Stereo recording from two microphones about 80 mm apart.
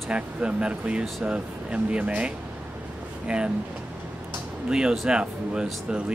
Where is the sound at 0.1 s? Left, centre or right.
Centre.